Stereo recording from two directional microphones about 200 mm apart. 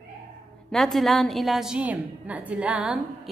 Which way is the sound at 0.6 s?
Centre (ahead or behind).